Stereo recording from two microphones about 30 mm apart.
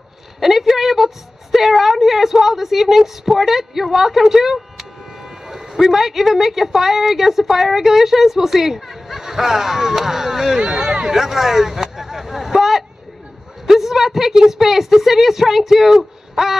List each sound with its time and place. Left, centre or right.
0.4 s a woman's voice: centre
10.6 s speech: right
11.1 s a sound: centre
13.7 s a woman's voice: centre
16.4 s wail: centre